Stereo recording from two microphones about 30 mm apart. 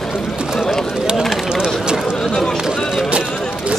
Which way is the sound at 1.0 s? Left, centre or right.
Right.